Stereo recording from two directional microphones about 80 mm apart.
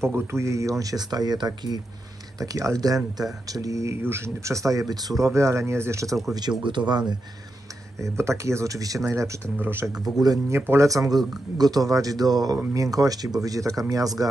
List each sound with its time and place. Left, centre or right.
0.0 s speech: right
2.4 s speech: right
6.6 s speech: right
8.0 s speech: right
9.6 s speech: right
10.1 s speech: centre
10.5 s speech: right